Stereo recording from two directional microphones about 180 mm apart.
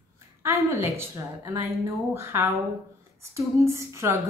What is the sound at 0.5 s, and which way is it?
A woman's voice, 15° right (ahead or behind).